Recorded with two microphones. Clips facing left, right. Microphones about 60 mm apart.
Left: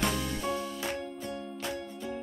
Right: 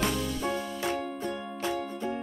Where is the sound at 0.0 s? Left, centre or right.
Centre.